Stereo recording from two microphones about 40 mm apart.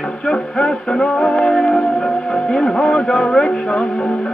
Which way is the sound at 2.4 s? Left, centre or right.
Centre.